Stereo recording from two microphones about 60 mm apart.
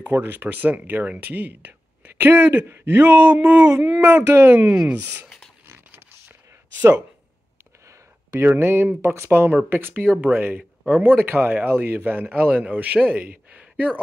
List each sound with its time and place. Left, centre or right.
0.0 s speech: right
5.7 s a sound: right
8.5 s a man's voice: right